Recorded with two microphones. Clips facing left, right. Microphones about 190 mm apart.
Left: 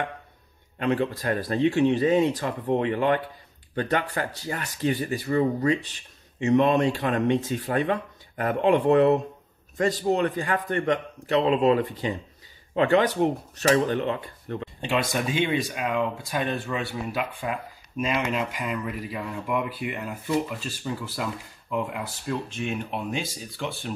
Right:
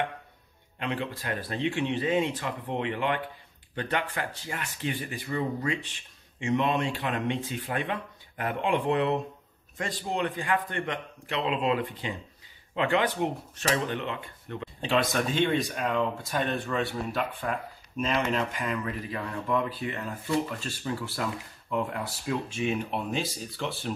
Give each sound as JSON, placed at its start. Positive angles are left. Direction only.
{"t": 0.7, "sound": "speech", "side_deg": 45}
{"t": 14.8, "sound": "speech", "side_deg": 5}